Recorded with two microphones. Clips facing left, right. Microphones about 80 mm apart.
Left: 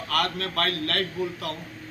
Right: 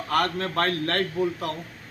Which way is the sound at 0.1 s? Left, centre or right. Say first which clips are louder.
Right 3 dB; right.